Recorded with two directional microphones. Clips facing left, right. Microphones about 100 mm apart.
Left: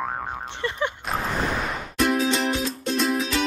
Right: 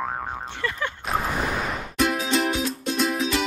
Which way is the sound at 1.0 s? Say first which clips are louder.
Right 4 dB; centre (ahead or behind).